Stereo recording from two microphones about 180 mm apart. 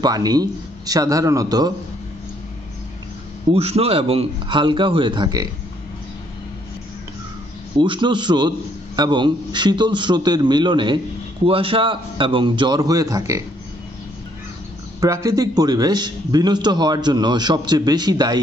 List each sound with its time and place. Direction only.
0.0 s a man's voice: 20° right (ahead or behind)
3.5 s a man's voice: 35° right (ahead or behind)
7.7 s a man's voice: 25° right (ahead or behind)
15.0 s a man's voice: 20° right (ahead or behind)